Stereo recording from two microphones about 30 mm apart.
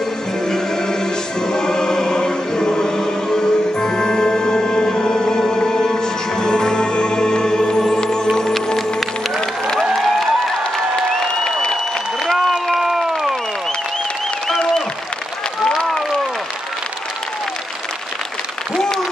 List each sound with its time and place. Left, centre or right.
1.5 s choir: left
7.8 s music: left
9.9 s music: centre
11.1 s applause: left
12.4 s a sound: centre
12.8 s crowd: centre